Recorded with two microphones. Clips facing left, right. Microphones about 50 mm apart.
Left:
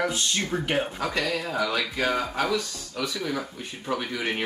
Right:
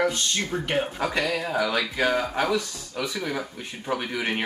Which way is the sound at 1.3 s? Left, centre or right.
Centre.